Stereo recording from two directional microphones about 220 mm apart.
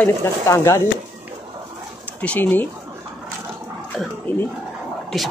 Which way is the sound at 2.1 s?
5° left (ahead or behind).